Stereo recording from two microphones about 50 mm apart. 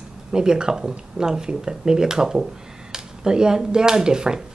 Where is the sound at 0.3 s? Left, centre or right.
Centre.